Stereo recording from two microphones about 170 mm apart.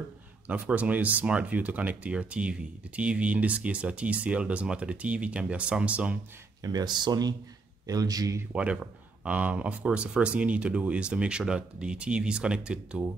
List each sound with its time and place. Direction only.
0.5 s speech: 10° right (ahead or behind)
6.6 s speech: 25° right (ahead or behind)
8.5 s speech: 5° right (ahead or behind)